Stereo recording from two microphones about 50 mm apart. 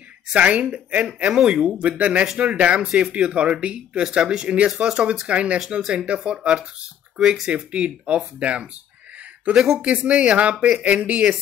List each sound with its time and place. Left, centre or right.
0.3 s speech: right
1.3 s speech: centre
1.8 s speech: right
9.8 s speech: right